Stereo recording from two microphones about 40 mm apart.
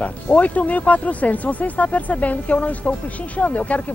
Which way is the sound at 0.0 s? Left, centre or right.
Left.